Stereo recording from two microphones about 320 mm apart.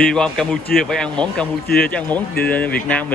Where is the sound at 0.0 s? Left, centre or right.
Centre.